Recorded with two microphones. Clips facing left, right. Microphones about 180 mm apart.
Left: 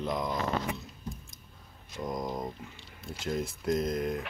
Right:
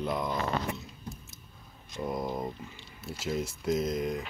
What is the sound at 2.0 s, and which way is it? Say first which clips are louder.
Speech: right 1 dB; 5° right (ahead or behind).